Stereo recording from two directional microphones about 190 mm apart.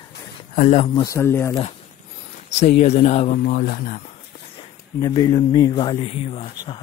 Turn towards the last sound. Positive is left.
turn(degrees=25)  # may be behind; listen again after turning